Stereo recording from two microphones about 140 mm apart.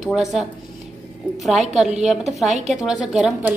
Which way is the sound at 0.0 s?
5° right (ahead or behind).